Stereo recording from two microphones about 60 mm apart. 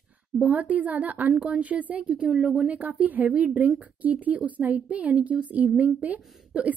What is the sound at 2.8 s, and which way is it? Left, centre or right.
Speech, right.